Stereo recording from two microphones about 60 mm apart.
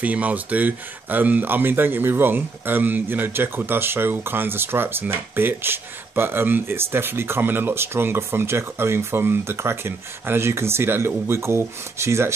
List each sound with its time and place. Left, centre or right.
0.0 s speech: right